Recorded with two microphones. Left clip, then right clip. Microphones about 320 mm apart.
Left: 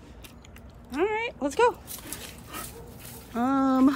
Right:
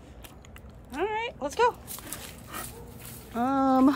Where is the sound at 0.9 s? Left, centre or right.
Centre.